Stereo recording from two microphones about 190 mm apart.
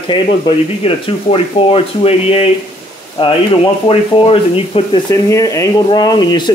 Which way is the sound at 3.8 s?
30° left (ahead or behind).